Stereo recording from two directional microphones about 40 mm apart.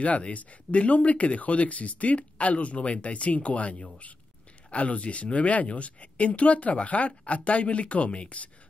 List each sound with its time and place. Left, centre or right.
0.0 s speech: left